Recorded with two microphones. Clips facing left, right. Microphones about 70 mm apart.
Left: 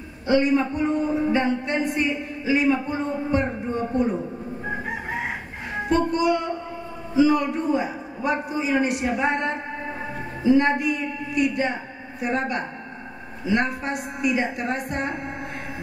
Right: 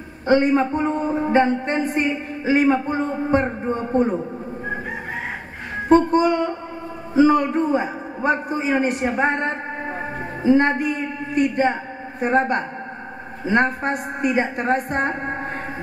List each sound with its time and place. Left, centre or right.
0.3 s a man's voice: right
5.9 s a man's voice: right